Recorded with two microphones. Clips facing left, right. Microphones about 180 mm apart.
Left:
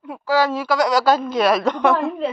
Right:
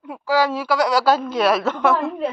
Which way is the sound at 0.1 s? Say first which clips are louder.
Left 1 dB; 10° right (ahead or behind).